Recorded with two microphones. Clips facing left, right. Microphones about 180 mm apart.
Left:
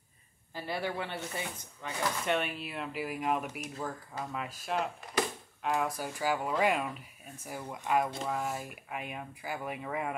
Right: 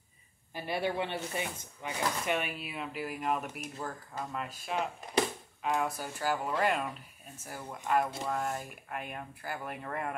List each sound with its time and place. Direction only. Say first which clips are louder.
0.6 s speech: right 2 dB; 20° right (ahead or behind)
2.2 s speech: left 1 dB; 5° right (ahead or behind)